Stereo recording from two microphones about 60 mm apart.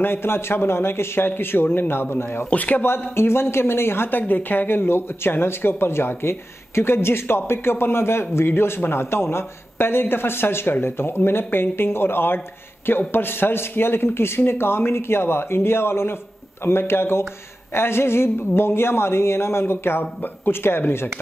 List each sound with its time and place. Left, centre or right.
0.0 s speech: left
2.5 s speech: left
2.8 s speech: left